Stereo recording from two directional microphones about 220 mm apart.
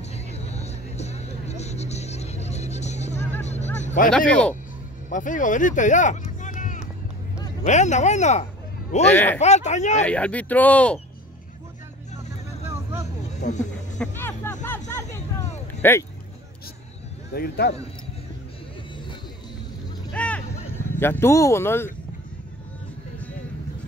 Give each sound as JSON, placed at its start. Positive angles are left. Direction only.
{"t": 0.3, "sound": "music", "side_deg": 30}
{"t": 3.4, "sound": "vehicle", "side_deg": 30}
{"t": 4.3, "sound": "speech", "side_deg": 5}
{"t": 5.1, "sound": "speech", "side_deg": 35}
{"t": 9.1, "sound": "speech", "side_deg": 10}
{"t": 9.4, "sound": "speech", "side_deg": 30}
{"t": 10.0, "sound": "speech", "side_deg": 5}
{"t": 12.6, "sound": "vehicle", "side_deg": -10}
{"t": 13.4, "sound": "a sound", "side_deg": 35}
{"t": 13.9, "sound": "music", "side_deg": 10}
{"t": 17.3, "sound": "a man's voice", "side_deg": 45}
{"t": 20.1, "sound": "vehicle", "side_deg": 5}
{"t": 21.0, "sound": "speech", "side_deg": 10}